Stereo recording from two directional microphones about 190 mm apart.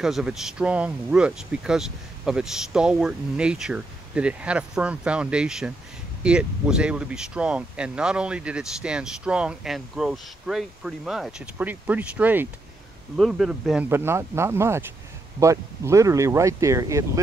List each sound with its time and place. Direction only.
0.0 s speech: centre (ahead or behind)